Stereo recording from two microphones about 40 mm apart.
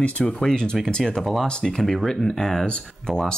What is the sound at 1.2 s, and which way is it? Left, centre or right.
Speech, centre.